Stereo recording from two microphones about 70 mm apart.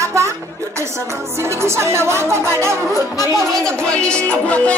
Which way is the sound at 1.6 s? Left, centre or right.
Right.